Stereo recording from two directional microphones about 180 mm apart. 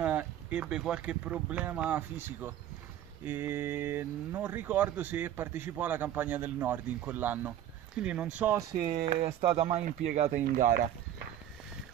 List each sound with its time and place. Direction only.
0.0 s speech: 10° right (ahead or behind)
8.7 s speech: 50° right (ahead or behind)
9.0 s speech: 35° right (ahead or behind); by 10.8 s 50° right (ahead or behind)